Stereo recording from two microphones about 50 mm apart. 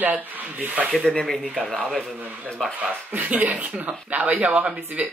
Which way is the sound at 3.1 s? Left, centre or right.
Right.